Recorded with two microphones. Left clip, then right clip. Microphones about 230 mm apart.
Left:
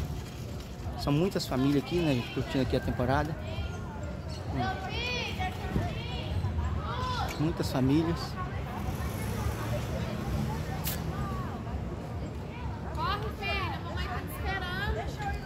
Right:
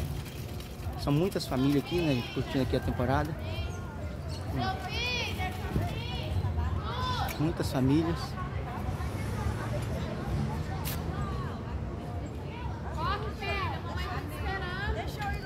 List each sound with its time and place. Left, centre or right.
1.0 s speech: centre
4.6 s a sound: right
7.5 s speech: centre
14.6 s vehicle: left